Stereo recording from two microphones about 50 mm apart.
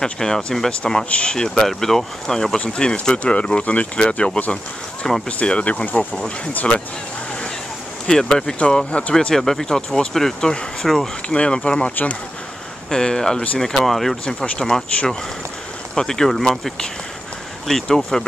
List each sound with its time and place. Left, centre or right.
0.0 s speech: centre
5.4 s speech: left
8.1 s speech: centre
9.3 s speech: centre
11.2 s speech: left
12.9 s speech: centre
14.2 s speech: centre